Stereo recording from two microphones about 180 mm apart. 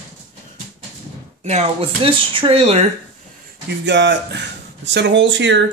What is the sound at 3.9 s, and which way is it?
Speech, 75° right (ahead or behind).